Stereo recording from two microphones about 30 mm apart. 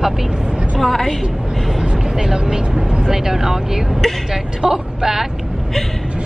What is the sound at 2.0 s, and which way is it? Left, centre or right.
Speech, right.